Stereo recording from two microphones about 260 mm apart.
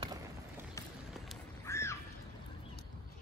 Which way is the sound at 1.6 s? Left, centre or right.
Centre.